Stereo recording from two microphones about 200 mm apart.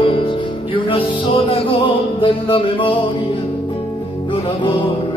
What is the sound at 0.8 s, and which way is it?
Music, 25° left (ahead or behind).